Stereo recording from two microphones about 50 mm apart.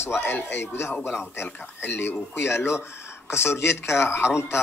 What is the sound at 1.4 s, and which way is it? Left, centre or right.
Speech, left.